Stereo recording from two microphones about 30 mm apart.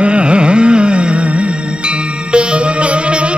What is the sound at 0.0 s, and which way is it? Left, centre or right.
Music, right.